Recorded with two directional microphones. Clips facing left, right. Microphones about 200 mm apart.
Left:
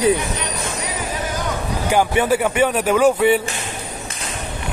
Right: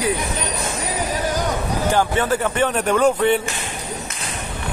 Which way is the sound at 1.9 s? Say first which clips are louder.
Left 3 dB; 10° left (ahead or behind).